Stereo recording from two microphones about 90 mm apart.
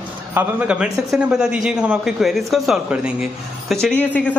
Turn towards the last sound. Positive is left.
turn(degrees=15)  # may be behind; listen again after turning